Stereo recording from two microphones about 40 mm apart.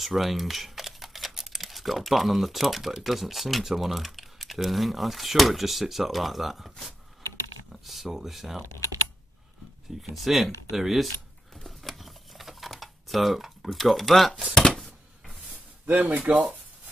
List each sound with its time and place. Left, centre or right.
0.0 s speech: centre
10.0 s speech: centre
11.6 s computer keyboard: centre
14.5 s a sound: centre
15.9 s speech: right
16.3 s speech: centre